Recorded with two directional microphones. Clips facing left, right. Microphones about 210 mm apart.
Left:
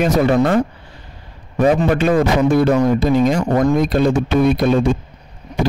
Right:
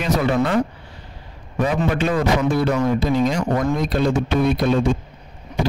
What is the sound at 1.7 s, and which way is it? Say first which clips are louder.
Speech: left 6 dB; 55° left (ahead or behind).